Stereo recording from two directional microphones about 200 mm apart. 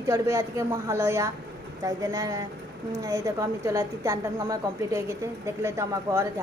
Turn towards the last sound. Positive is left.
turn(degrees=-15)  # may be behind; listen again after turning